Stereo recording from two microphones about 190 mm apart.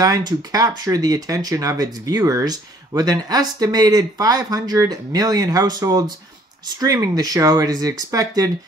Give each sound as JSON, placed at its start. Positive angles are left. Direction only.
{"t": 0.0, "sound": "speech", "side_deg": -20}